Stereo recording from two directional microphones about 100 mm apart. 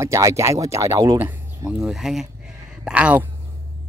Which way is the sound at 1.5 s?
40° right (ahead or behind).